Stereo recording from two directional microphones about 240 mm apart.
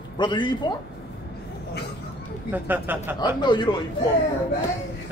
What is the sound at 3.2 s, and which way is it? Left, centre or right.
Speech, centre.